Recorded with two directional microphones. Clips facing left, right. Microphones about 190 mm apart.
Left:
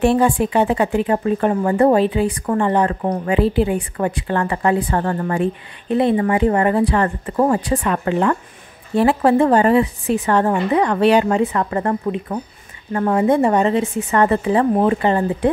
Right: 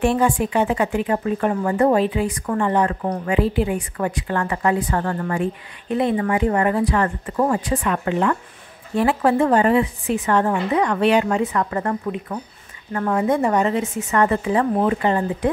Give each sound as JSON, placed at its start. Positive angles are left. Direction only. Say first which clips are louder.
{"t": 0.0, "sound": "a woman's voice", "louder": "left 3 dB", "side_deg": 30}